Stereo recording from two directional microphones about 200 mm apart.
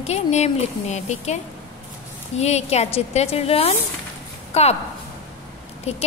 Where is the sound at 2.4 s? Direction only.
35° left (ahead or behind).